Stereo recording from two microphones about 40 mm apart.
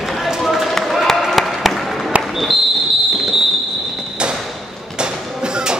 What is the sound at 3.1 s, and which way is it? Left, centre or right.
Fireworks, centre.